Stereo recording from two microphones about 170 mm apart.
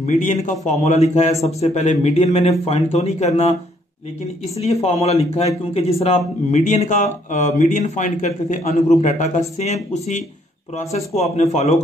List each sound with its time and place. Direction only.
0.0 s a man's voice: 45° left (ahead or behind)
4.6 s a man's voice: 40° left (ahead or behind)
10.8 s a man's voice: 40° left (ahead or behind)